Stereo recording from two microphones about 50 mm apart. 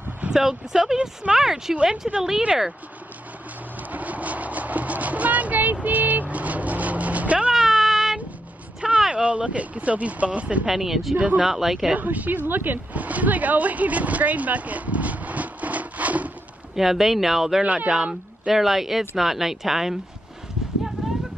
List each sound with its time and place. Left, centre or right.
0.3 s speech: centre
3.9 s vehicle: right
7.5 s child singing: centre
9.1 s speech: right
10.7 s speech: centre
11.1 s speech: right
11.4 s speech: centre
12.0 s a woman's voice: right
16.7 s speech: centre
17.6 s speech: right
17.9 s speech: centre
21.0 s clip-clop: centre